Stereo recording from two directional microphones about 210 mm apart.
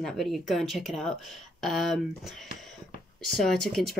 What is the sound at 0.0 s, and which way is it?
Speech, centre (ahead or behind).